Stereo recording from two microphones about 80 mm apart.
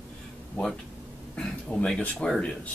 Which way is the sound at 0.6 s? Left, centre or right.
Centre.